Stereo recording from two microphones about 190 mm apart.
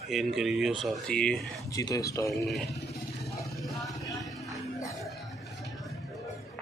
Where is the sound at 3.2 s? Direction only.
Centre (ahead or behind).